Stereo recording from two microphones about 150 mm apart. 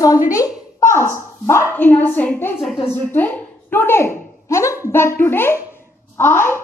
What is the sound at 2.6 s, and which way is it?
Speech, 40° left (ahead or behind).